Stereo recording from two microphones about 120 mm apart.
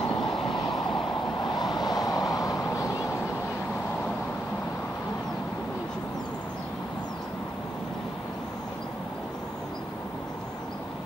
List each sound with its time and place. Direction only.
0.0 s train: 35° left (ahead or behind)
1.4 s vehicle: 35° left (ahead or behind)